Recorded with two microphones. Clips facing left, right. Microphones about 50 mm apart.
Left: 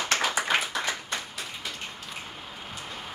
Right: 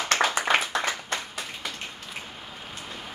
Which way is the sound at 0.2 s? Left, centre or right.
Right.